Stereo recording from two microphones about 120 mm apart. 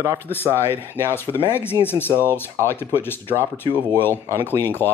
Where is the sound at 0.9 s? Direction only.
20° left (ahead or behind).